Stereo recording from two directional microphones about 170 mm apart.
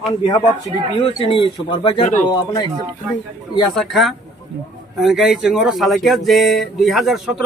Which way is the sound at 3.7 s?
Centre (ahead or behind).